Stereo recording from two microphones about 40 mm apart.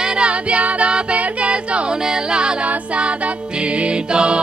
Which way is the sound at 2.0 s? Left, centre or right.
Centre.